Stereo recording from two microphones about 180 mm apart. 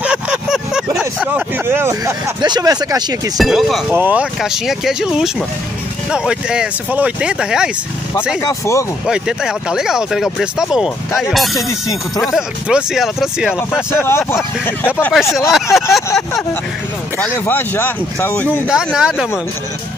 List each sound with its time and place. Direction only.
0.0 s a sound: 5° right (ahead or behind); by 3.2 s 20° right (ahead or behind)
3.3 s speech: centre (ahead or behind)
8.4 s speech: 15° left (ahead or behind)
9.0 s speech: 5° right (ahead or behind)
11.5 s speech: 20° left (ahead or behind)
12.4 s speech: 5° right (ahead or behind)
13.9 s speech: 15° left (ahead or behind)
15.5 s speech: centre (ahead or behind)
17.5 s speech: 10° left (ahead or behind)
18.7 s speech: 5° right (ahead or behind)